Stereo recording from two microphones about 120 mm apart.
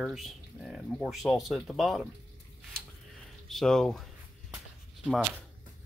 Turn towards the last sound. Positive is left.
turn(degrees=0)  # may be behind; listen again after turning